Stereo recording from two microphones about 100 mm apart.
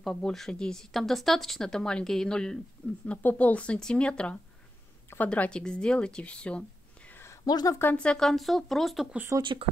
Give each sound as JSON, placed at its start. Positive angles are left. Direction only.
{"t": 0.0, "sound": "a woman's voice", "side_deg": 5}
{"t": 7.4, "sound": "speech", "side_deg": 40}
{"t": 7.8, "sound": "speech", "side_deg": 10}
{"t": 9.4, "sound": "speech", "side_deg": -55}